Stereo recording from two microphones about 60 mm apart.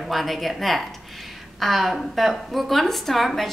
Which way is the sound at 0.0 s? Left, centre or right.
Centre.